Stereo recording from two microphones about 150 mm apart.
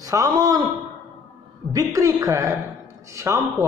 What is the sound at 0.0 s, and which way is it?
Speech, 20° right (ahead or behind).